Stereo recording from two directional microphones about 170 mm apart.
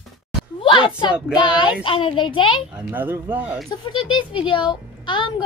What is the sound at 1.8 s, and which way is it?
Speech, 30° left (ahead or behind).